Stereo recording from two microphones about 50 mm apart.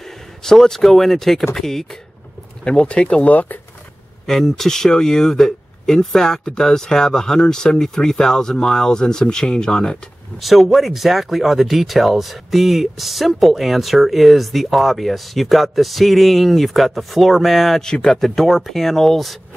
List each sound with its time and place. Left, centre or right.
0.4 s speech: centre
3.3 s speech: left
4.3 s speech: centre
10.4 s speech: centre
17.8 s speech: centre